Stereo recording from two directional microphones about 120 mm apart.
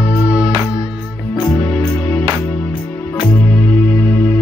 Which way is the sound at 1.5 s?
10° left (ahead or behind).